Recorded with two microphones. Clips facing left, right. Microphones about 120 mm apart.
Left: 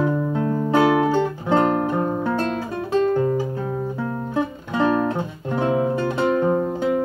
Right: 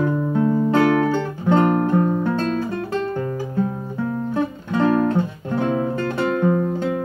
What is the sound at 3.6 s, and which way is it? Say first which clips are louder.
Music: right 2 dB; 5° left (ahead or behind).